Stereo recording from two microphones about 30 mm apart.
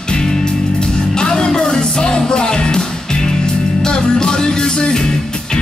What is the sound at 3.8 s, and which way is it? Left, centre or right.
Music, left.